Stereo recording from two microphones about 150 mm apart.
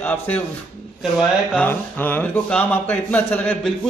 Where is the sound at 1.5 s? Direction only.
10° left (ahead or behind).